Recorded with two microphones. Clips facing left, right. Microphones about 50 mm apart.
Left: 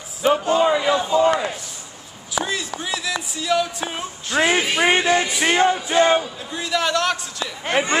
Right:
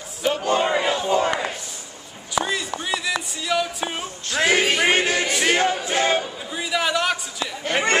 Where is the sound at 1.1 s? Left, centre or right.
Right.